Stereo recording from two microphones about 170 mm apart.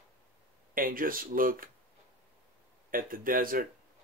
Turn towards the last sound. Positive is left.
turn(degrees=-55)  # may be behind; listen again after turning